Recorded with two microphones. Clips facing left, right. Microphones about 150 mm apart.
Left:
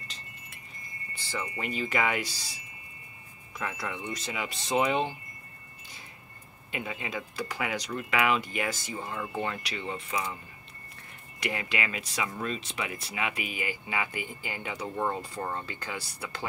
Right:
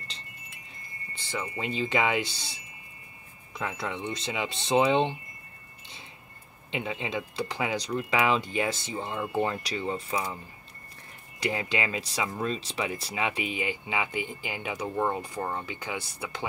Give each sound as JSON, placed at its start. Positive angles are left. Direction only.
{"t": 1.3, "sound": "speech", "side_deg": -20}
{"t": 5.8, "sound": "a sound", "side_deg": -25}
{"t": 6.7, "sound": "speech", "side_deg": -25}